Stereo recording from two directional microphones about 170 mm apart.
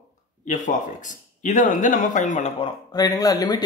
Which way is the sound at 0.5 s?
50° left (ahead or behind).